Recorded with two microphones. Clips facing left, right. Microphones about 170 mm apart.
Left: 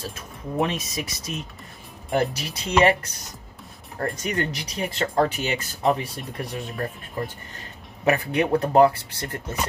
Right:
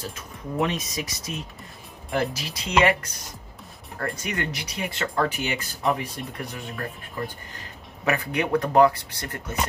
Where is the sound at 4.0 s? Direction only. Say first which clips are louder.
Left 3 dB; 30° left (ahead or behind).